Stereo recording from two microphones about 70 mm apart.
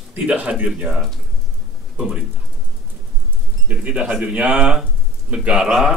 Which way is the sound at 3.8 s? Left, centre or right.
Centre.